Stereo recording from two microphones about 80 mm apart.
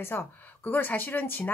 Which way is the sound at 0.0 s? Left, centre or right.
Left.